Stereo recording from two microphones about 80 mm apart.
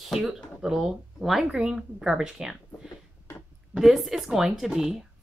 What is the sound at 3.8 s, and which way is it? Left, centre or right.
A woman's voice, centre.